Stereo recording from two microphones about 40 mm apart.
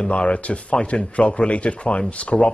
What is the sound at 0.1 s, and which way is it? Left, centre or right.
Speech, left.